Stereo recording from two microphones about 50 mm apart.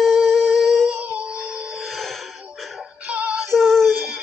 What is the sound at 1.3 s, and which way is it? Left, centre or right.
Music, centre.